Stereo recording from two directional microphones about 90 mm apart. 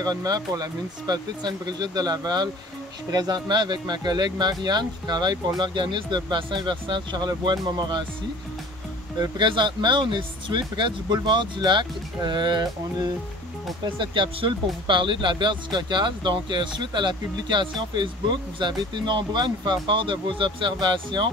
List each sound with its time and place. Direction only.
0.0 s speech: 45° right (ahead or behind)
5.6 s speech: 65° right (ahead or behind); by 8.0 s 50° right (ahead or behind)
9.2 s speech: 60° right (ahead or behind)
13.9 s speech: 65° right (ahead or behind)